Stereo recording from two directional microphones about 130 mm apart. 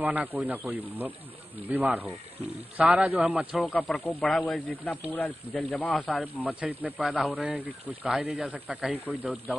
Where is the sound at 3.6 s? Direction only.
10° left (ahead or behind).